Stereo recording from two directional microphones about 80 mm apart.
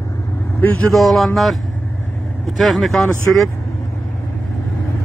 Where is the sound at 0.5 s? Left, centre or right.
Left.